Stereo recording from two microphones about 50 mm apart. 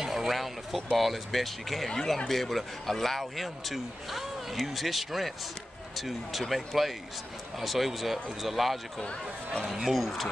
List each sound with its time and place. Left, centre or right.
0.0 s speech: centre